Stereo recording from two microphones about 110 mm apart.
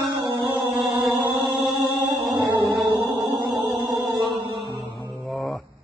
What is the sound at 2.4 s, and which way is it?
Music, 35° right (ahead or behind).